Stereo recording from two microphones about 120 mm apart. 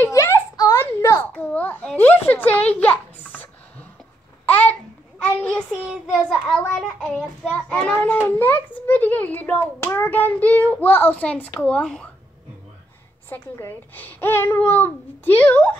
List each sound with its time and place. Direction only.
0.0 s a sound: 25° left (ahead or behind)
1.3 s a sound: 10° left (ahead or behind)
4.5 s babbling: 15° left (ahead or behind)
5.2 s child singing: 10° left (ahead or behind)
6.4 s a child's voice: 5° left (ahead or behind)
13.3 s a child's voice: 20° left (ahead or behind)